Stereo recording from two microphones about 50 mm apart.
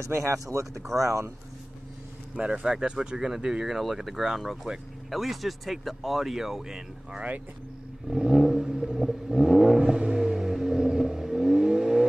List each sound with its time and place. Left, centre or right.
0.0 s speech: right
2.3 s speech: right
8.1 s vehicle: centre